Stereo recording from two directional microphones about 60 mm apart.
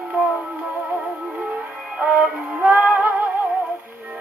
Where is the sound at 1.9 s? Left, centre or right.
Centre.